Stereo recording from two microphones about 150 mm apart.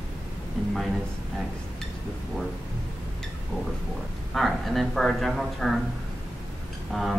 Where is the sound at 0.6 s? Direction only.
5° left (ahead or behind).